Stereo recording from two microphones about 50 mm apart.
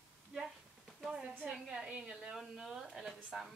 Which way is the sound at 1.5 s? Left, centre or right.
Centre.